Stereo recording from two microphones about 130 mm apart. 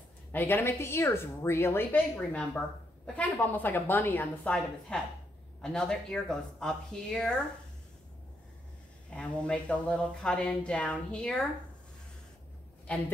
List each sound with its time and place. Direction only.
0.3 s speech: 15° left (ahead or behind)
9.1 s speech: 10° left (ahead or behind)